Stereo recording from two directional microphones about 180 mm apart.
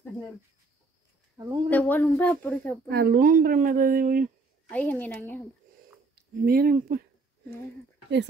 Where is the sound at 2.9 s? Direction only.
60° right (ahead or behind).